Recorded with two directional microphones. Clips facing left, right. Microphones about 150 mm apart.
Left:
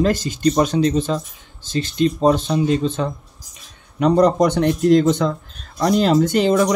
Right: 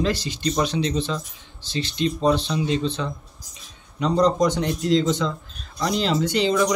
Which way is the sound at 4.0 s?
60° left (ahead or behind).